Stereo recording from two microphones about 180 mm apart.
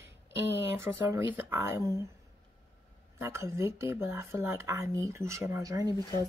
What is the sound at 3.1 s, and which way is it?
Speech, 15° right (ahead or behind).